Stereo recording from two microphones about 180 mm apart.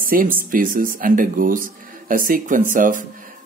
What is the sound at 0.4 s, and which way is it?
Speech, 50° right (ahead or behind).